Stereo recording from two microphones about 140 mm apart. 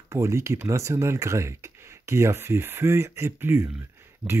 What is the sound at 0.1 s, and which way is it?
Speech, 20° right (ahead or behind).